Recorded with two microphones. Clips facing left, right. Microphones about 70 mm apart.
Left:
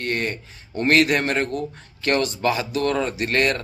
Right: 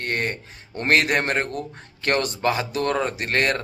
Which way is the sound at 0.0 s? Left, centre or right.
Right.